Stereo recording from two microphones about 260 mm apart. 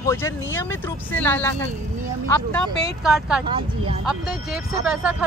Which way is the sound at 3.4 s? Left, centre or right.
Centre.